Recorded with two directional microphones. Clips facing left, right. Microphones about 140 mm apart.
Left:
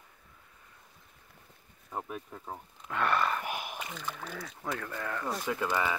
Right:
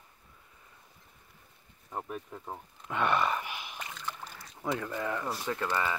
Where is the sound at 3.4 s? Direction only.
50° left (ahead or behind).